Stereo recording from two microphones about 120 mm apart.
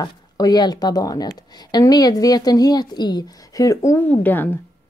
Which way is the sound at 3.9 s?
15° left (ahead or behind).